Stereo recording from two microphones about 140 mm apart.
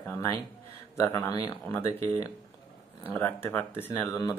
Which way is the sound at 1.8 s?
45° right (ahead or behind).